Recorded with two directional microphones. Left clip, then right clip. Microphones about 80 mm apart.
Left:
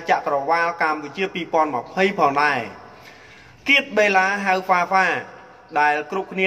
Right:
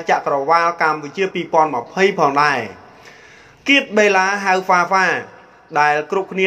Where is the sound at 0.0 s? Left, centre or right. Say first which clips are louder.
Right 3 dB; right.